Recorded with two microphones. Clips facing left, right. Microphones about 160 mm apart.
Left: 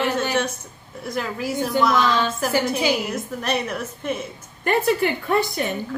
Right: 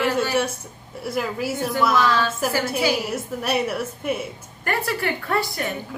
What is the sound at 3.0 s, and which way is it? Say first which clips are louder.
A woman's voice: even; 5° right (ahead or behind).